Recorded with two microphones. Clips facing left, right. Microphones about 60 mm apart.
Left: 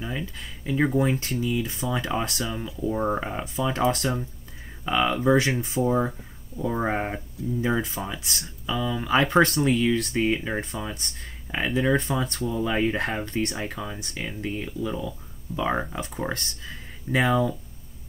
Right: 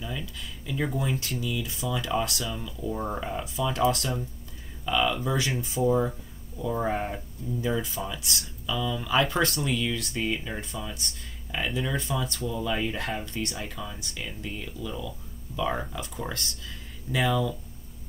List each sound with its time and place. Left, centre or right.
0.0 s speech: left